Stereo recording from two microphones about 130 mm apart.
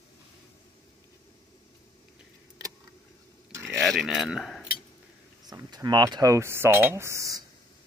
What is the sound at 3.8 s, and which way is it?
Cutlery, centre (ahead or behind).